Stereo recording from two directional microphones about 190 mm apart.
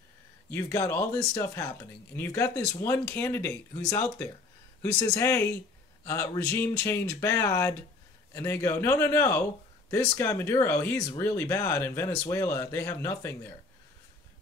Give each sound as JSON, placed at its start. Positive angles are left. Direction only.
{"t": 0.5, "sound": "speech", "side_deg": 15}